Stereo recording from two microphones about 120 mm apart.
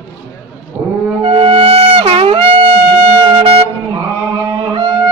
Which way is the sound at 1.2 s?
50° right (ahead or behind).